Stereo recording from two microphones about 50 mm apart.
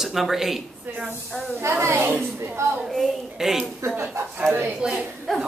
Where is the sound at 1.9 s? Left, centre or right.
Right.